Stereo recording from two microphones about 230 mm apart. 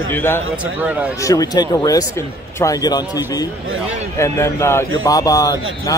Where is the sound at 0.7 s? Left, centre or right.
Centre.